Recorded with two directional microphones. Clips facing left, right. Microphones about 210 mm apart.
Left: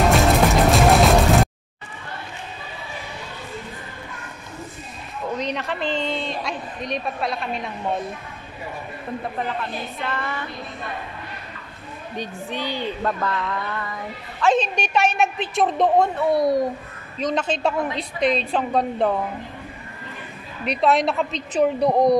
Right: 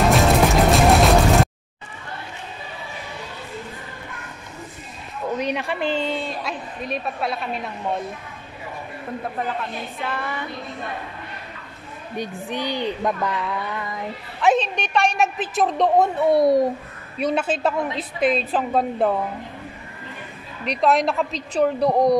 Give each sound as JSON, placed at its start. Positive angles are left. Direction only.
{"t": 0.1, "sound": "music", "side_deg": 0}
{"t": 5.4, "sound": "a woman's voice", "side_deg": -10}
{"t": 9.2, "sound": "a woman's voice", "side_deg": -5}
{"t": 12.2, "sound": "a woman's voice", "side_deg": -15}
{"t": 14.6, "sound": "a woman's voice", "side_deg": 5}
{"t": 16.2, "sound": "a child's voice", "side_deg": -25}
{"t": 17.2, "sound": "a woman's voice", "side_deg": -10}
{"t": 20.6, "sound": "a woman's voice", "side_deg": 0}